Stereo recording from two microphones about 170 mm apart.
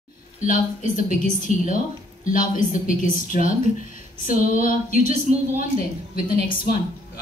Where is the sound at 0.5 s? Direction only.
50° left (ahead or behind).